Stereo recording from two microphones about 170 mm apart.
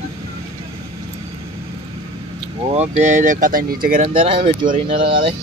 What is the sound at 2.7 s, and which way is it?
Speech, 40° right (ahead or behind).